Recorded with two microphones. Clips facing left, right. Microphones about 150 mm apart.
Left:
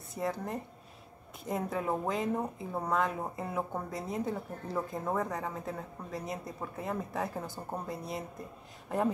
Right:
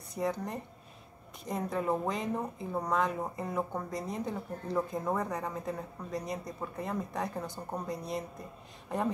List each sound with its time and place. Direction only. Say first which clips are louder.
0.1 s a woman's voice: right 1 dB; centre (ahead or behind)